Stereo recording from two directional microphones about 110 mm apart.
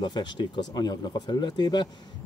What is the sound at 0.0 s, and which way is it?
Speech, 45° left (ahead or behind).